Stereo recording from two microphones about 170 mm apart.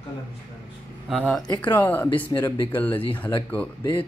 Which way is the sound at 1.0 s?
Centre (ahead or behind).